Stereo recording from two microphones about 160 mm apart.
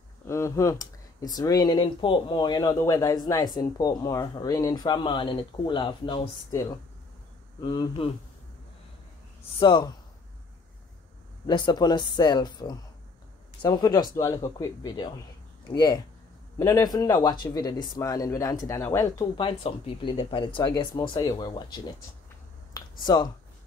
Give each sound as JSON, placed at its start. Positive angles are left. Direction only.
{"t": 0.3, "sound": "speech", "side_deg": 15}
{"t": 7.6, "sound": "speech", "side_deg": 30}
{"t": 9.6, "sound": "speech", "side_deg": 30}
{"t": 11.4, "sound": "speech", "side_deg": 25}
{"t": 19.3, "sound": "speech", "side_deg": 30}